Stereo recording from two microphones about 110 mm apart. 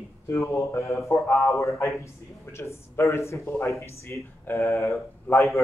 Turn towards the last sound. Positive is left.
turn(degrees=25)  # may be behind; listen again after turning